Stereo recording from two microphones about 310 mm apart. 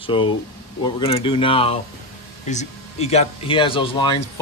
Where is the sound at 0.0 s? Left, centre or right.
Centre.